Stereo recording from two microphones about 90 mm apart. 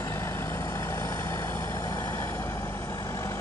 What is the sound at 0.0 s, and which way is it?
Vehicle, 35° left (ahead or behind).